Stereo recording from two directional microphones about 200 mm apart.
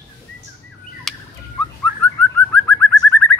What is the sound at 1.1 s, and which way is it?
Bird, centre (ahead or behind).